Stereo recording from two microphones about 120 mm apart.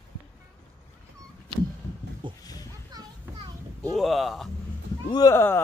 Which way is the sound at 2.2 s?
40° right (ahead or behind).